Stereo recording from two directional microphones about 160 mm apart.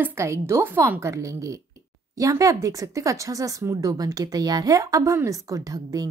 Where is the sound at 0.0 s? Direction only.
15° right (ahead or behind).